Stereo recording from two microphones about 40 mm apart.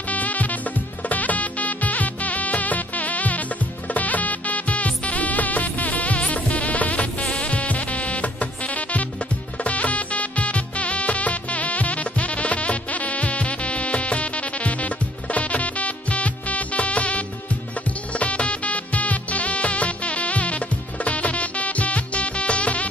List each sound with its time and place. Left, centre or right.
0.1 s music: left